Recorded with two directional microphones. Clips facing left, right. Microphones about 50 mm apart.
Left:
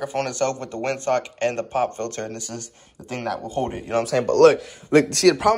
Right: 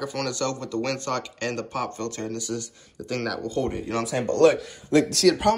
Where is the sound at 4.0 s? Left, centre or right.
Left.